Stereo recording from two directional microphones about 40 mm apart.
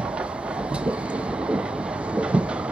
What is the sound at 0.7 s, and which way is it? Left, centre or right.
Train, right.